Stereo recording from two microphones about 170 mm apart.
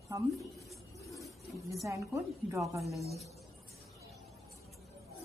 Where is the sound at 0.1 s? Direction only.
15° right (ahead or behind).